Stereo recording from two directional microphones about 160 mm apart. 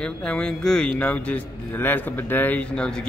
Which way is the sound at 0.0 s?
5° left (ahead or behind).